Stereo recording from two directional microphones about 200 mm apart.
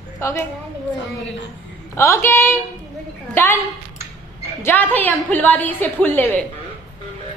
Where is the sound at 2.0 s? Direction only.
15° left (ahead or behind).